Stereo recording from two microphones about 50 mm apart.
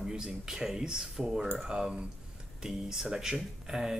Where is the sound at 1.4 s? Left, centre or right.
Right.